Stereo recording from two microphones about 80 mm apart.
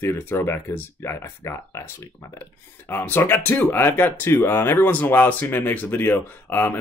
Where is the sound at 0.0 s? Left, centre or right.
Left.